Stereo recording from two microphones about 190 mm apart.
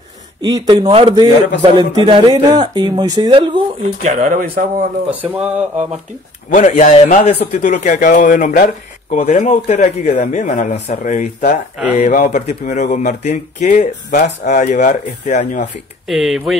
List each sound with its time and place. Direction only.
0.4 s speech: 20° right (ahead or behind)
4.1 s speech: 45° right (ahead or behind)
5.2 s speech: 10° right (ahead or behind)
6.5 s speech: 40° left (ahead or behind)
16.1 s speech: centre (ahead or behind)